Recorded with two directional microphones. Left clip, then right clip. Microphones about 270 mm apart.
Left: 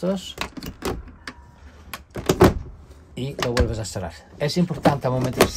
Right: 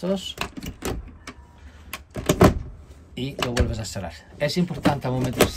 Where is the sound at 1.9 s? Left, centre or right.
Centre.